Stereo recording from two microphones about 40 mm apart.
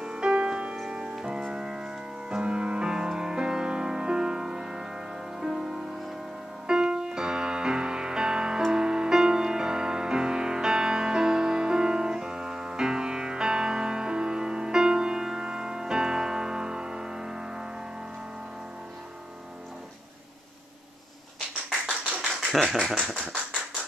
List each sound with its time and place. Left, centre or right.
0.0 s music: right
22.5 s speech: centre